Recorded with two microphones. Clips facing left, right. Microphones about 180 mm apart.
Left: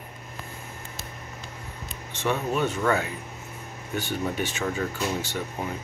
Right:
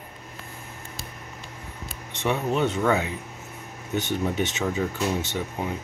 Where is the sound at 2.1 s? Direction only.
20° right (ahead or behind).